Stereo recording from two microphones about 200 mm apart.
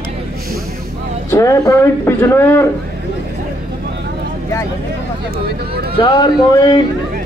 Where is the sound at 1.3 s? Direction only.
15° left (ahead or behind).